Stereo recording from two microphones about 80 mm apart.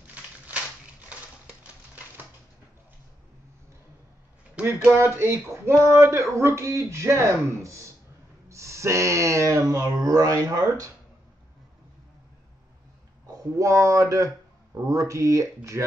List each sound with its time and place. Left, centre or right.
0.0 s crushing: centre
4.8 s speech: right
13.3 s speech: right